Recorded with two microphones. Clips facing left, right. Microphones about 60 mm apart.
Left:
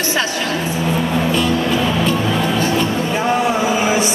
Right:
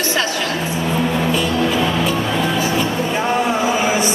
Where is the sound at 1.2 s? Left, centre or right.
Centre.